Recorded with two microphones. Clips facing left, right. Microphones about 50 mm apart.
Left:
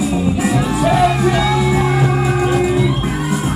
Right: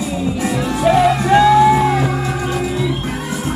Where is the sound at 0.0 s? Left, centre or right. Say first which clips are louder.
Left 3 dB; centre.